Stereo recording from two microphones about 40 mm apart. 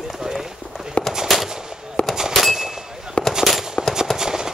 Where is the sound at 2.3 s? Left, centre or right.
Centre.